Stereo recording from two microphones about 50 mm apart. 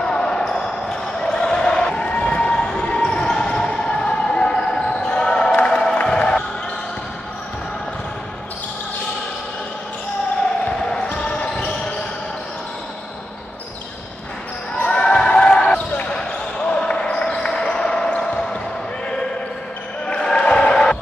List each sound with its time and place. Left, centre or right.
0.0 s basketball bounce: centre
5.7 s music: centre
6.0 s basketball bounce: centre
10.8 s basketball bounce: centre
14.9 s basketball bounce: left
20.1 s music: centre